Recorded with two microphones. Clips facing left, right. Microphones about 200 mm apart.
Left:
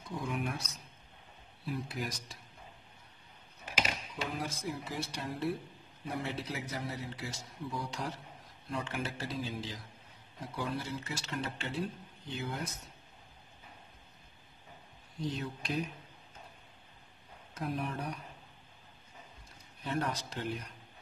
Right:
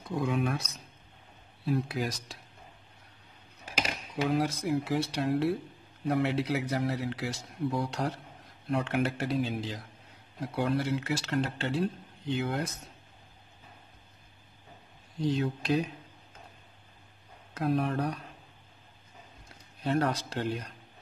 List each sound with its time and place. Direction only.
0.1 s speech: 70° right (ahead or behind)
1.7 s speech: 80° right
4.2 s a man's voice: 65° right (ahead or behind)
15.2 s speech: 80° right
17.6 s speech: 80° right
19.8 s speech: 70° right (ahead or behind)